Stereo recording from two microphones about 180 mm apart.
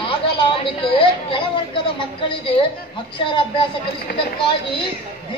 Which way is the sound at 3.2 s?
30° left (ahead or behind).